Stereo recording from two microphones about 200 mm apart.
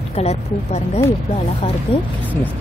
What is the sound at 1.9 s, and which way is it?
Speech, 25° left (ahead or behind).